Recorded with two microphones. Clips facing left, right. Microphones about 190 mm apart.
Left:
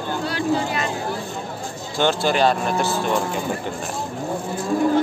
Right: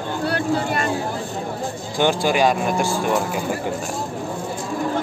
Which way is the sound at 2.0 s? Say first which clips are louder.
Right 1 dB; 10° right (ahead or behind).